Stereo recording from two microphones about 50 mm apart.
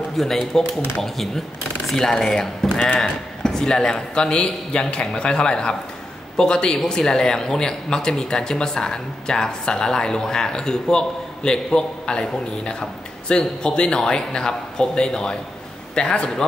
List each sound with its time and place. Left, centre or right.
0.2 s speech: centre
2.7 s a man's voice: left